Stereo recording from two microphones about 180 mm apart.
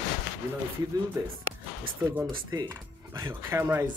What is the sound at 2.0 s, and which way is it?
Speech, 15° right (ahead or behind).